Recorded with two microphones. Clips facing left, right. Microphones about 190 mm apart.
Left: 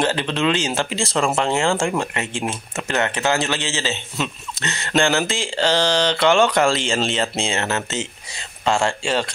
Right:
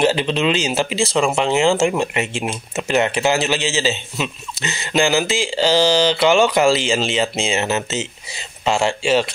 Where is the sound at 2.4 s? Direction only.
10° right (ahead or behind).